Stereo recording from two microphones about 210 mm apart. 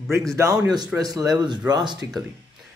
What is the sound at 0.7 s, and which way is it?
Speech, 20° right (ahead or behind).